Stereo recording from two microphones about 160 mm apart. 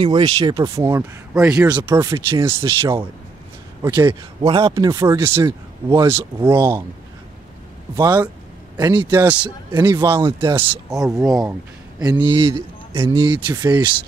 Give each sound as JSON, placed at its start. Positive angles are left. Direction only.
{"t": 0.0, "sound": "speech", "side_deg": -30}
{"t": 0.7, "sound": "speech", "side_deg": -15}
{"t": 4.4, "sound": "a man's voice", "side_deg": -30}
{"t": 6.0, "sound": "speech", "side_deg": -15}
{"t": 7.9, "sound": "speech", "side_deg": -25}
{"t": 9.2, "sound": "speech", "side_deg": -10}
{"t": 9.7, "sound": "speech", "side_deg": -25}
{"t": 11.1, "sound": "speech", "side_deg": -20}